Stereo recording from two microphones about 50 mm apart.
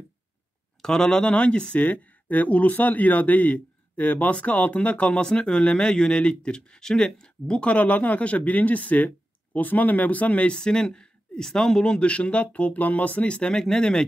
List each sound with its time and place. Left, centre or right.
0.8 s speech: centre
1.9 s speech: left; by 14.0 s centre